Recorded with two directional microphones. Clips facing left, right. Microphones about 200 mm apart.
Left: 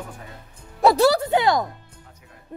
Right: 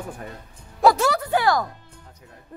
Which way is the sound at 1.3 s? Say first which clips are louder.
Left 1 dB; 20° left (ahead or behind).